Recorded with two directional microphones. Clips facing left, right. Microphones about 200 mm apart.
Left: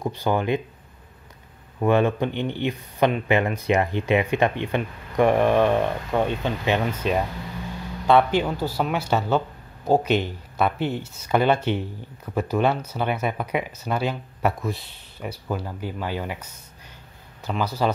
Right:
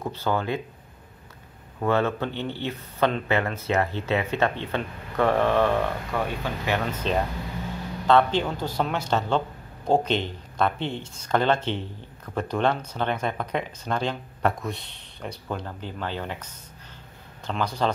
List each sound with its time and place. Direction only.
0.0 s speech: 15° left (ahead or behind)
1.8 s speech: 15° left (ahead or behind)
6.9 s speech: 10° left (ahead or behind)
17.5 s speech: 5° left (ahead or behind)